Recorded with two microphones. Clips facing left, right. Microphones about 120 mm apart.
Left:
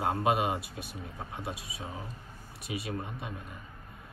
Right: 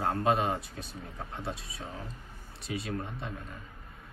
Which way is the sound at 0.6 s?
60° left (ahead or behind).